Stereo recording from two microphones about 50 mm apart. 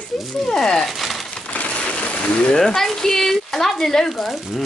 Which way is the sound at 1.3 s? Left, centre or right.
Left.